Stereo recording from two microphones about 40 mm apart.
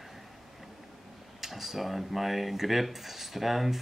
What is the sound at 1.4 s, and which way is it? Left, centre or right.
Speech, centre.